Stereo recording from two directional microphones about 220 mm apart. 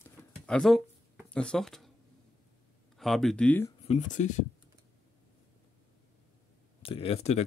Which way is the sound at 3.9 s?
35° left (ahead or behind).